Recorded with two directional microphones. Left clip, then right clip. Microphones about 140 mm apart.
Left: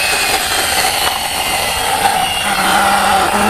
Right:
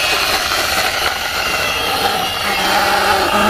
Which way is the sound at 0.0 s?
Centre (ahead or behind).